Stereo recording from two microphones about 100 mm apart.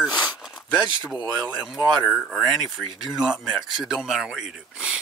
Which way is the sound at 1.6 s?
5° right (ahead or behind).